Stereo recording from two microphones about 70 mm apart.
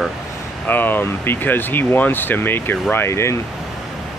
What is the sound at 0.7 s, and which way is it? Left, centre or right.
Speech, left.